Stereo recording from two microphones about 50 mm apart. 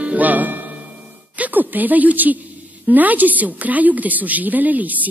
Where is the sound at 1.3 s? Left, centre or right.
Right.